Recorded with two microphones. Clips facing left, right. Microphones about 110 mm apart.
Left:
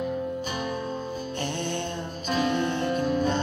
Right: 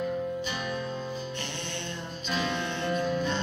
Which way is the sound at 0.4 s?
45° left (ahead or behind).